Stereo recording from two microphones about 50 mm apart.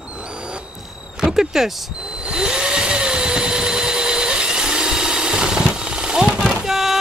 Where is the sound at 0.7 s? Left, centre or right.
Centre.